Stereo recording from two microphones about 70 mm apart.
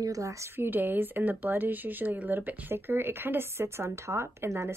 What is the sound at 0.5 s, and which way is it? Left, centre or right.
Speech, right.